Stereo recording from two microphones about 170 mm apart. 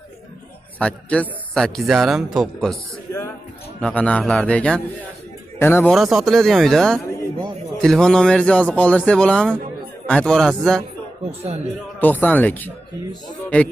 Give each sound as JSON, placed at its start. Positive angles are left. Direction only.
{"t": 0.7, "sound": "speech", "side_deg": 5}
{"t": 3.8, "sound": "a man's voice", "side_deg": 5}
{"t": 5.9, "sound": "speech", "side_deg": 0}
{"t": 11.2, "sound": "speech", "side_deg": -40}
{"t": 12.0, "sound": "a man's voice", "side_deg": 10}